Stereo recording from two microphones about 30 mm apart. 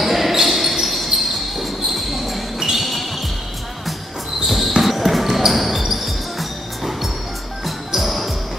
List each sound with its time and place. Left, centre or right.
0.0 s basketball bounce: centre
4.5 s basketball bounce: centre
5.8 s basketball bounce: centre
6.0 s music: centre